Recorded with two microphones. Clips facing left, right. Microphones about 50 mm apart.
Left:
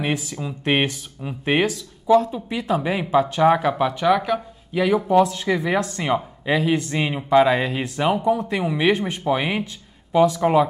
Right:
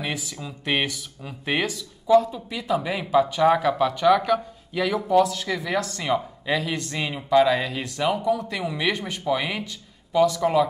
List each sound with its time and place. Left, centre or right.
0.0 s speech: left